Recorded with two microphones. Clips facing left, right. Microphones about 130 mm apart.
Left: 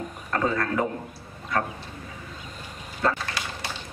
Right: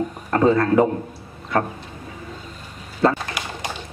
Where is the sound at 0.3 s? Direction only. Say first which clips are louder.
Right 9 dB; 30° right (ahead or behind).